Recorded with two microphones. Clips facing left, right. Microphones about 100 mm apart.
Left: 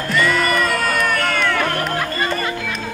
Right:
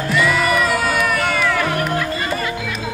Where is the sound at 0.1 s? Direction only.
5° right (ahead or behind).